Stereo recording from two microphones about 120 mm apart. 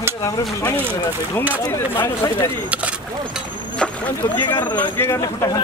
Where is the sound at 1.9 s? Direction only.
20° left (ahead or behind).